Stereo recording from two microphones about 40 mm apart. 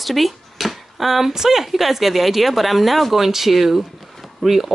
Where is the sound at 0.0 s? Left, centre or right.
Centre.